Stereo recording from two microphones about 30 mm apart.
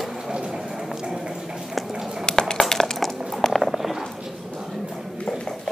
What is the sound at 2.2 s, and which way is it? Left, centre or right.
Cutlery, left.